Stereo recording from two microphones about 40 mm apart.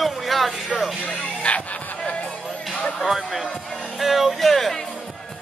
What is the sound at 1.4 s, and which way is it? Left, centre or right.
Speech, left.